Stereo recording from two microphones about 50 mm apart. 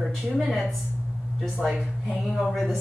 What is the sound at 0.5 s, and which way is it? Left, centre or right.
Speech, centre.